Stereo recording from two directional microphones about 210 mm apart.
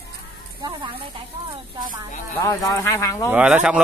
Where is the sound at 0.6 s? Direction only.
20° right (ahead or behind).